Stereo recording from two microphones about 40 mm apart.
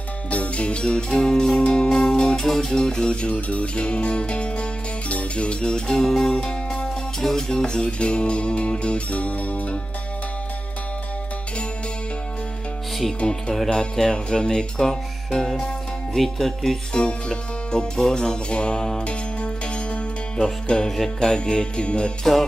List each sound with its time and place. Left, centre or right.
0.3 s music: left
13.2 s music: left; by 16.7 s centre
16.9 s music: left
22.2 s music: centre